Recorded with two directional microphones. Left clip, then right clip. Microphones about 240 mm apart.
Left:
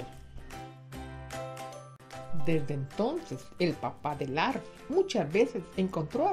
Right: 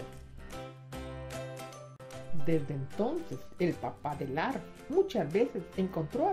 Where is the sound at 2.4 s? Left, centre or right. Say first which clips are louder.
Left 1 dB; left.